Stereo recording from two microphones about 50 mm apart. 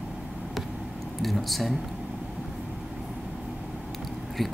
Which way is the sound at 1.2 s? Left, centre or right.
Centre.